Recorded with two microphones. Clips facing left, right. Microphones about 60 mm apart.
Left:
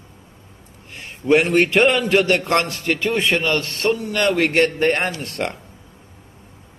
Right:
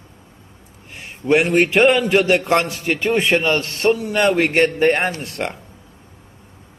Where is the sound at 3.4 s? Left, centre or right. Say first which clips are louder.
Right 2 dB; right.